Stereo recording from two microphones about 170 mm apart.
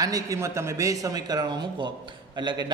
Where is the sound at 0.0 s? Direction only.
20° right (ahead or behind).